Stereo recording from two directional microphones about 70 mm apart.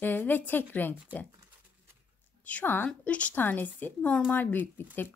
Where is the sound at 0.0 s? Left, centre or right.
Left.